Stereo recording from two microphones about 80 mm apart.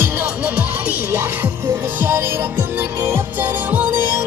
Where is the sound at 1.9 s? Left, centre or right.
Right.